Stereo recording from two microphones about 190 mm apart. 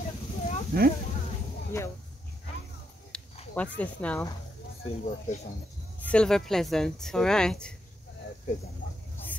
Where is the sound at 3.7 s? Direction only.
5° left (ahead or behind).